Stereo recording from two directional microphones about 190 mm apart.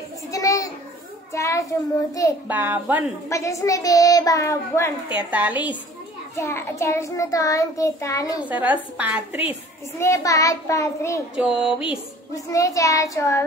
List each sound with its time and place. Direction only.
0.3 s a sound: 15° left (ahead or behind)
1.3 s a child's voice: 15° left (ahead or behind)
2.4 s a woman's voice: 10° right (ahead or behind)
3.3 s child singing: 15° left (ahead or behind)
5.1 s a woman's voice: 10° right (ahead or behind)
6.3 s child singing: 15° left (ahead or behind)
8.4 s a woman's voice: 10° right (ahead or behind)
9.9 s child singing: 15° left (ahead or behind)
11.3 s a sound: 5° right (ahead or behind)
12.5 s child singing: 15° left (ahead or behind)